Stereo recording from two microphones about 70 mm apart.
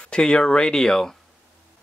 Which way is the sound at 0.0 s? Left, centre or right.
Centre.